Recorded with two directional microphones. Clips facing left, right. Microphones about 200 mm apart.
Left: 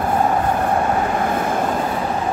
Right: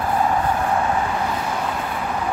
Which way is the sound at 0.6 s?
50° left (ahead or behind).